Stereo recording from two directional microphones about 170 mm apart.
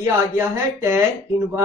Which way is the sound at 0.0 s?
15° right (ahead or behind).